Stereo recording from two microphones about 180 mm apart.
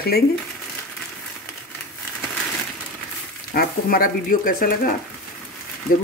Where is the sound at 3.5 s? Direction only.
55° left (ahead or behind).